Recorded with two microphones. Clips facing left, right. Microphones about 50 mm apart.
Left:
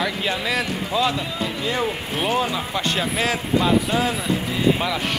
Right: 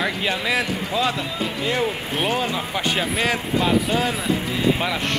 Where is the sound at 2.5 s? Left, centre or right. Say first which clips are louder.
Even; centre.